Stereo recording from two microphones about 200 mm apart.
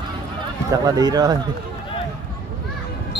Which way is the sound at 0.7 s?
20° right (ahead or behind).